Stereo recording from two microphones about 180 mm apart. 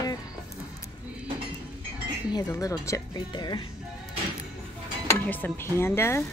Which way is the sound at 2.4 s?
15° left (ahead or behind).